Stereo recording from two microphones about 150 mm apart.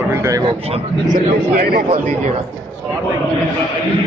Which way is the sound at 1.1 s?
80° right.